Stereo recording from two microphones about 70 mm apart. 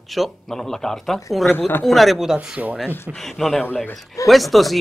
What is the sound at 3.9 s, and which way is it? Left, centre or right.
Speech, centre.